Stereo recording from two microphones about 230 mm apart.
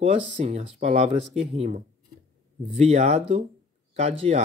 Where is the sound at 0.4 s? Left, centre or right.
Right.